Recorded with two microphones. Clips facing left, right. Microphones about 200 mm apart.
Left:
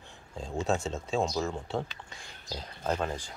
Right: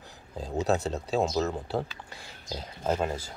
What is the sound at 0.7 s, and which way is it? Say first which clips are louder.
Speech: right 3 dB; 5° right (ahead or behind).